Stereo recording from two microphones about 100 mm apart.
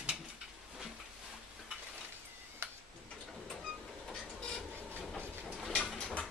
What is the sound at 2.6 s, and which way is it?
Tick-tock, 25° right (ahead or behind).